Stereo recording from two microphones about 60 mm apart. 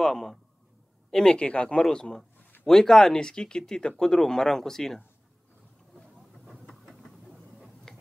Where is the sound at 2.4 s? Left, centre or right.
Left.